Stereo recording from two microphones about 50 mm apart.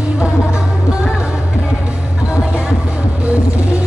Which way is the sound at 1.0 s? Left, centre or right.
Centre.